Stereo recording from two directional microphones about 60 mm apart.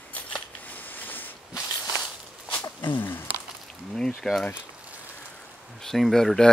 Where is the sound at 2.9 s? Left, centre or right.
Left.